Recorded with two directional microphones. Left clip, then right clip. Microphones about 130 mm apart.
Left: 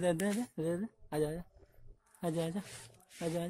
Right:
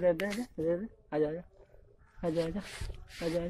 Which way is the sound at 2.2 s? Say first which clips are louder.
Right 4 dB; 70° left (ahead or behind).